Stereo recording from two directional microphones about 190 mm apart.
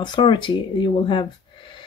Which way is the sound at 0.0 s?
25° left (ahead or behind).